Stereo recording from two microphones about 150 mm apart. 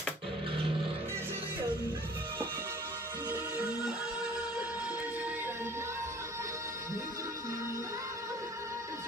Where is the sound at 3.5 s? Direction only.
5° right (ahead or behind).